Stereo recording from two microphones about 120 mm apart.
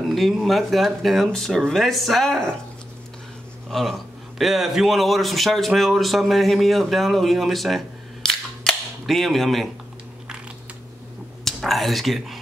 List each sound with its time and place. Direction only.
0.0 s speech: centre (ahead or behind)
4.4 s speech: centre (ahead or behind)
11.4 s speech: centre (ahead or behind)